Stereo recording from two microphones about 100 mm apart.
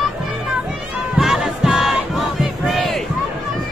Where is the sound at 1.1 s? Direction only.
5° right (ahead or behind).